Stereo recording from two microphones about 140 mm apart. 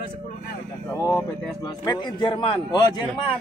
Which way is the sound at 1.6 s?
30° left (ahead or behind).